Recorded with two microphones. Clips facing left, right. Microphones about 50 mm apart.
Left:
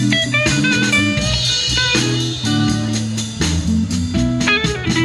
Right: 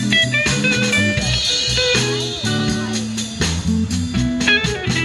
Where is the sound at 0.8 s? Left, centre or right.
Left.